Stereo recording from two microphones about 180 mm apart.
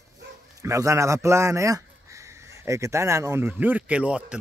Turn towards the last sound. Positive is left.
turn(degrees=-5)  # may be behind; listen again after turning